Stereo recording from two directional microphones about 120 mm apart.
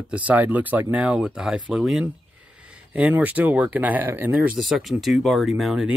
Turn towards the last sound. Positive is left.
turn(degrees=-5)  # may be behind; listen again after turning